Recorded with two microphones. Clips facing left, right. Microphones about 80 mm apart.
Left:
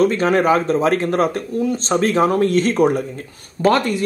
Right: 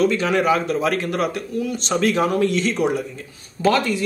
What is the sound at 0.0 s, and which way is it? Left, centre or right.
A man's voice, left.